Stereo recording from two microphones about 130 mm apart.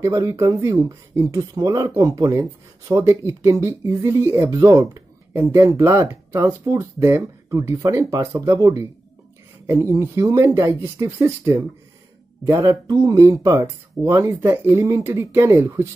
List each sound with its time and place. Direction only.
0.0 s speech: 25° right (ahead or behind)